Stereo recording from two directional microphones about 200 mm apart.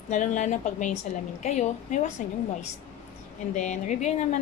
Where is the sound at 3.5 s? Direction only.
35° left (ahead or behind).